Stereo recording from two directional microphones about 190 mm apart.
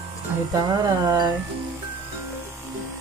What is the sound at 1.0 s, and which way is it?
Speech, 25° right (ahead or behind).